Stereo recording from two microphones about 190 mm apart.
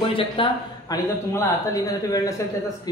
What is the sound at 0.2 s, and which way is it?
A man's voice, 25° left (ahead or behind).